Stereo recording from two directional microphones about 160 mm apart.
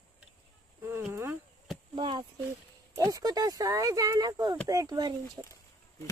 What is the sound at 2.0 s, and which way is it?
Speech, 30° right (ahead or behind).